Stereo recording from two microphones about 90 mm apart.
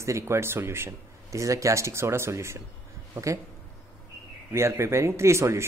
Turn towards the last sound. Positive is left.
turn(degrees=-30)  # may be behind; listen again after turning